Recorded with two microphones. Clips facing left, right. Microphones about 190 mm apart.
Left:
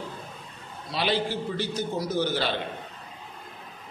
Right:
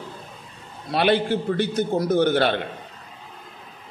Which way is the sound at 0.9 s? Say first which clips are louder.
Right 7 dB; 60° right (ahead or behind).